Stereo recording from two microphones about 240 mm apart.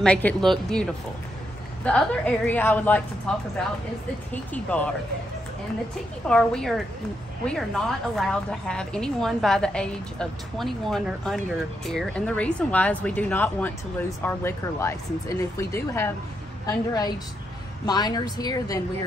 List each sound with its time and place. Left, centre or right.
0.0 s a woman's voice: centre
1.9 s a woman's voice: centre
6.2 s a woman's voice: centre